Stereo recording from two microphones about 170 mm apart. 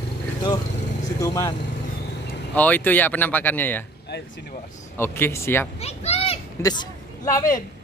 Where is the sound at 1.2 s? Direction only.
20° left (ahead or behind).